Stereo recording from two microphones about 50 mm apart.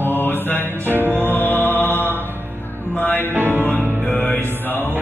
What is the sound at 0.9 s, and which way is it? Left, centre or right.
Music, right.